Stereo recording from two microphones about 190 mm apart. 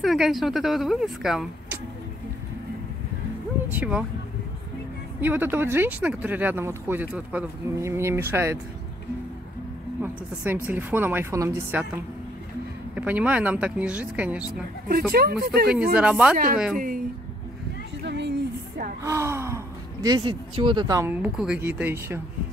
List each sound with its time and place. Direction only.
0.0 s speech: centre (ahead or behind)
3.7 s speech: 5° right (ahead or behind)
5.2 s speech: 10° right (ahead or behind)
10.0 s speech: 10° right (ahead or behind)
12.9 s speech: 10° right (ahead or behind)
14.9 s speech: 50° right (ahead or behind)
15.9 s speech: 5° right (ahead or behind)
16.7 s speech: 45° right (ahead or behind)
18.0 s speech: 65° right (ahead or behind)
19.0 s speech: 15° right (ahead or behind)